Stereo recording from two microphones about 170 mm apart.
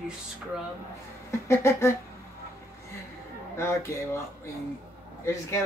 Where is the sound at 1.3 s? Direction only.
15° left (ahead or behind).